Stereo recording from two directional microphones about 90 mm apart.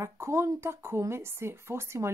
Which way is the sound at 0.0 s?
30° right (ahead or behind).